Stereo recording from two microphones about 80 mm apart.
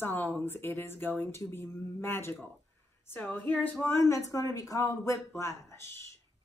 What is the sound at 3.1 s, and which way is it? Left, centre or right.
Speech, left.